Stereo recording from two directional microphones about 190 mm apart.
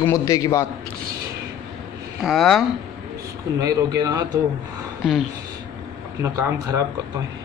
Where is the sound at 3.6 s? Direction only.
20° right (ahead or behind).